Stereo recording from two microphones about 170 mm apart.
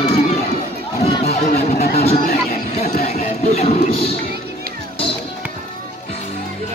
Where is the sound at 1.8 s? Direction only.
60° left (ahead or behind).